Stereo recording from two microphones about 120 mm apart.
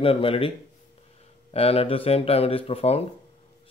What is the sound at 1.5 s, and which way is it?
Speech, 55° left (ahead or behind).